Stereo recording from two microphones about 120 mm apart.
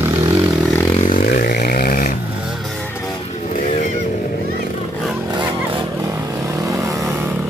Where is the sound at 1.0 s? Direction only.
90° left.